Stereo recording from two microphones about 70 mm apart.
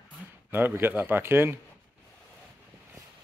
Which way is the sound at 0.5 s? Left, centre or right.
Right.